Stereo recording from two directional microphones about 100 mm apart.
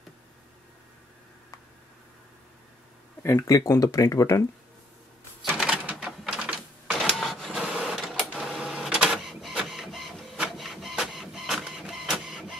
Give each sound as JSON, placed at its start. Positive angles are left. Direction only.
{"t": 3.2, "sound": "speech", "side_deg": 25}
{"t": 5.6, "sound": "typewriter", "side_deg": -5}
{"t": 7.0, "sound": "printer", "side_deg": 5}
{"t": 8.3, "sound": "printer", "side_deg": -10}